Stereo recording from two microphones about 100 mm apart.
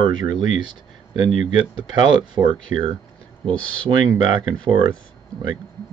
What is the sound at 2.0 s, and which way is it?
Speech, 50° right (ahead or behind).